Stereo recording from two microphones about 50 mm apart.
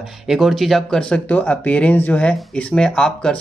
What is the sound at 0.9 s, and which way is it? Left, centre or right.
Speech, centre.